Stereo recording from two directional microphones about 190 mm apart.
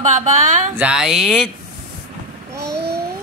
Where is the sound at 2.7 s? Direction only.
60° right (ahead or behind).